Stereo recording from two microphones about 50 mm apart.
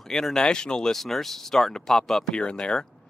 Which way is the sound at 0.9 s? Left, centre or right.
Centre.